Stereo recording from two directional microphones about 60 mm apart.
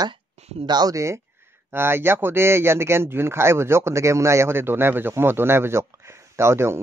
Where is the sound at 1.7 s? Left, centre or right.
Right.